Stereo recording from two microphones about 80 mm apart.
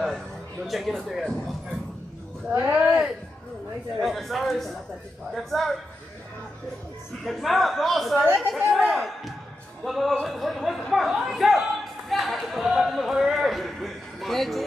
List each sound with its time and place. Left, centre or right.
0.7 s speech: centre
2.5 s speech: right
4.0 s speech: centre
7.2 s speech: centre
12.1 s a sound: centre